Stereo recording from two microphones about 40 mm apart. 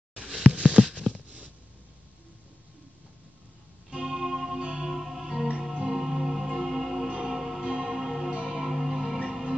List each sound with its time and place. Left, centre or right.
0.2 s a sound: centre
0.5 s a sound: right
4.0 s music: centre
4.6 s music: centre
4.9 s music: centre
7.1 s music: centre
7.3 s music: centre
7.6 s music: centre
8.0 s music: centre